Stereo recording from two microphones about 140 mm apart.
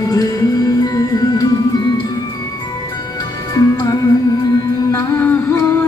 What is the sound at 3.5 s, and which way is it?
Music, 25° left (ahead or behind).